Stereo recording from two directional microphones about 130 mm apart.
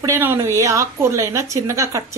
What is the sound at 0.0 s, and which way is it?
A woman's voice, 20° right (ahead or behind).